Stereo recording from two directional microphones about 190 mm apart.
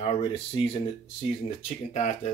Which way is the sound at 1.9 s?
40° left (ahead or behind).